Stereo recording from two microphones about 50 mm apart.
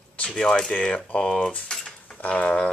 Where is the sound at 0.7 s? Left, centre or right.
Left.